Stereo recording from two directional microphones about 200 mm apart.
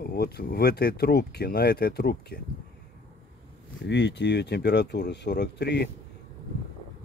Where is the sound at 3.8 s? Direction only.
60° left (ahead or behind).